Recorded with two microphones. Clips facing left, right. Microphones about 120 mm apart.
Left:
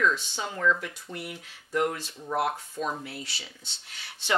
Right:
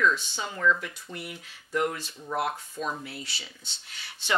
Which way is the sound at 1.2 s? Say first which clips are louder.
Left 1 dB; 50° left (ahead or behind).